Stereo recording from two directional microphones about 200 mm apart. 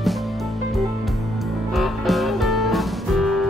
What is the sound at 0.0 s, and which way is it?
Music, centre (ahead or behind).